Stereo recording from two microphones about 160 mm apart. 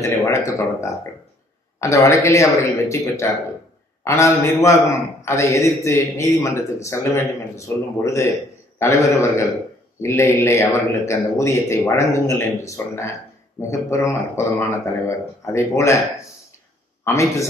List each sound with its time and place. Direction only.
0.0 s a man's voice: 20° left (ahead or behind)
17.0 s a man's voice: 20° left (ahead or behind)